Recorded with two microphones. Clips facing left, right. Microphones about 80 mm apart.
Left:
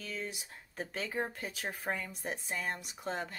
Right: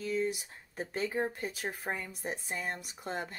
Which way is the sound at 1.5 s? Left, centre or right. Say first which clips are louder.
Right 1 dB; centre.